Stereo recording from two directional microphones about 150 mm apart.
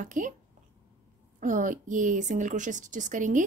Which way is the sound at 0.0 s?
60° right (ahead or behind).